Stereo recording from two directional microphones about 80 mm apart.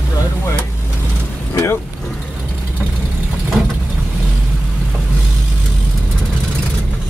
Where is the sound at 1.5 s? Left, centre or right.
Left.